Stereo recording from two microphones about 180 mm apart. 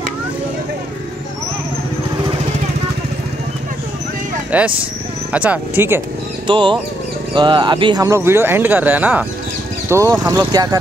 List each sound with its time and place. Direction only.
4.5 s speech: 10° right (ahead or behind)
6.4 s speech: 25° right (ahead or behind)